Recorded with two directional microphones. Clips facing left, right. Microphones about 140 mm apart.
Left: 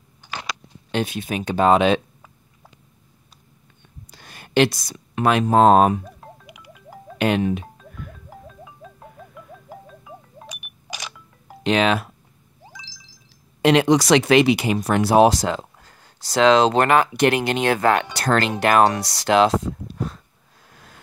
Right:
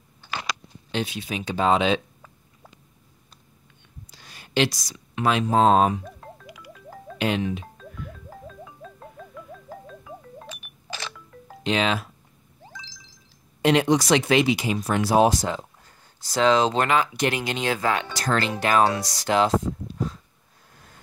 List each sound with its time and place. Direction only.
0.9 s speech: 50° left (ahead or behind)
4.1 s speech: 55° left (ahead or behind)
6.2 s music: 15° left (ahead or behind)
7.2 s speech: 55° left (ahead or behind)
8.3 s music: 10° left (ahead or behind)
10.5 s camera: 15° left (ahead or behind)
11.6 s speech: 65° left (ahead or behind)
12.6 s a sound: 10° left (ahead or behind)
13.6 s speech: 85° left
20.7 s vehicle: 90° left